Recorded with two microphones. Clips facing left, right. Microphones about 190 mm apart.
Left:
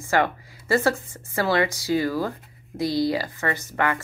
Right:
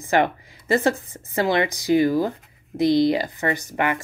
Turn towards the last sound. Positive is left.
turn(degrees=-15)  # may be behind; listen again after turning